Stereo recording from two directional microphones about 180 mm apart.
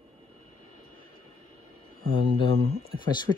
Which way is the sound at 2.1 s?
30° left (ahead or behind).